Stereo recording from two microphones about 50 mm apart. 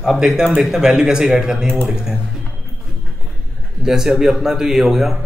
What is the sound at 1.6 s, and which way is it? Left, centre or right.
Speech, centre.